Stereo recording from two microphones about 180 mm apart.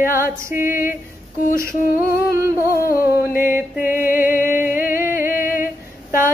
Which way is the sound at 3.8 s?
50° left (ahead or behind).